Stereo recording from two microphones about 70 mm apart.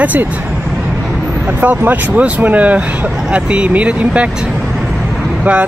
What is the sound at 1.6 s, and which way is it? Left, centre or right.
Speech, right.